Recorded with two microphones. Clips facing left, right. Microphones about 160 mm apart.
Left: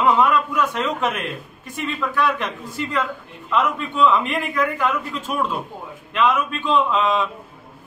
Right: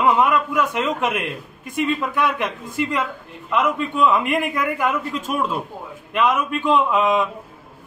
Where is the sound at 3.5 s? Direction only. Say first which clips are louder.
Right 1 dB; 10° right (ahead or behind).